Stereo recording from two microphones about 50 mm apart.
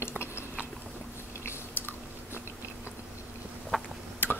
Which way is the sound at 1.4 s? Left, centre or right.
Left.